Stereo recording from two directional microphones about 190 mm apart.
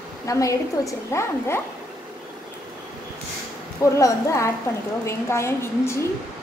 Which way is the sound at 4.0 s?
15° left (ahead or behind).